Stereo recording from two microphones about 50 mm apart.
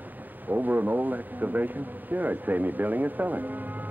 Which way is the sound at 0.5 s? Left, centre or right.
Right.